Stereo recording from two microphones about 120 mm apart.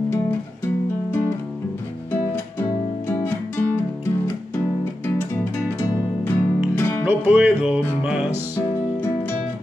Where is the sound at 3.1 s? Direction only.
15° left (ahead or behind).